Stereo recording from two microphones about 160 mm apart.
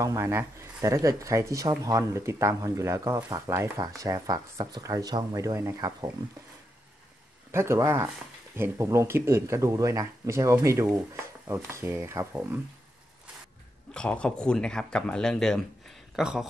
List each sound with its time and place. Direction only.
0.0 s speech: 20° right (ahead or behind)
7.5 s speech: 15° right (ahead or behind)
13.9 s speech: 5° left (ahead or behind)